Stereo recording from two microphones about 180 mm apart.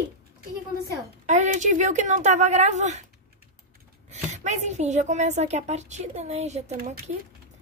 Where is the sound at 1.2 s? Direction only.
45° right (ahead or behind).